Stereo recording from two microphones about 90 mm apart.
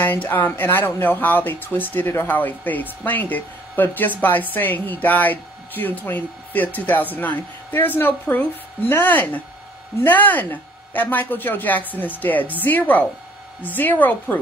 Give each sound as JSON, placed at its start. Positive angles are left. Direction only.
{"t": 0.0, "sound": "speech", "side_deg": 20}